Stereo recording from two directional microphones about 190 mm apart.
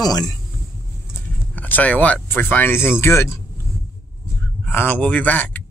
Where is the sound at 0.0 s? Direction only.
20° left (ahead or behind).